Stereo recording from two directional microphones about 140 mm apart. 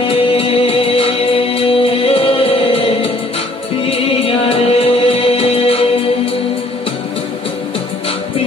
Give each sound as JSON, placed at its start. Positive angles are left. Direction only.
{"t": 0.0, "sound": "music", "side_deg": 45}